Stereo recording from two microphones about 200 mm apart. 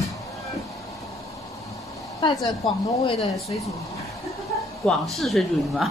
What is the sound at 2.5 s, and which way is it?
Speech, 25° left (ahead or behind).